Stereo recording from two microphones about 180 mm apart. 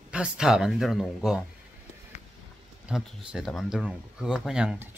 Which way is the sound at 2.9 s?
5° right (ahead or behind).